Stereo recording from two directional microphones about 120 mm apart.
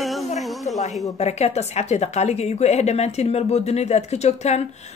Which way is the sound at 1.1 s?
65° left (ahead or behind).